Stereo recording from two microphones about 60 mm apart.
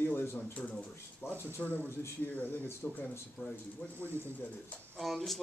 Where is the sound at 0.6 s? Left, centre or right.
Centre.